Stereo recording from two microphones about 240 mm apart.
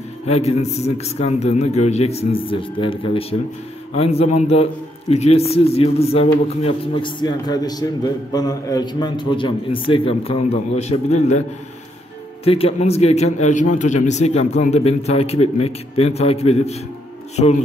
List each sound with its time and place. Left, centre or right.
0.3 s a man's voice: left
12.4 s a man's voice: left